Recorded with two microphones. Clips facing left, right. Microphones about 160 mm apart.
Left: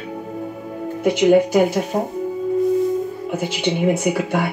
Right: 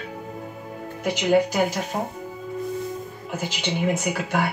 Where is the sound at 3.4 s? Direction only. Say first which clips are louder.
Left 5 dB; 50° left (ahead or behind).